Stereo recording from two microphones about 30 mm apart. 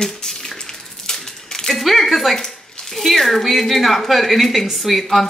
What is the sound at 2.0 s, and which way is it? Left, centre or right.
Speech, centre.